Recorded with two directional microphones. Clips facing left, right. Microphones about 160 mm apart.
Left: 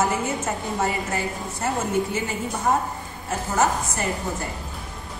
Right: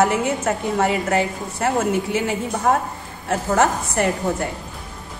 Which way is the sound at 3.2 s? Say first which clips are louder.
Right 4 dB; 70° right (ahead or behind).